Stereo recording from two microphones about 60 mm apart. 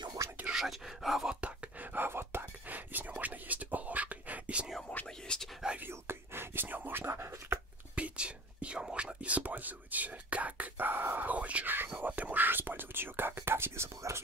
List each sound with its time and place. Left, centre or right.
0.5 s speech: centre
1.4 s whispering: right
5.0 s whispering: centre
5.8 s speech: right
7.9 s whispering: right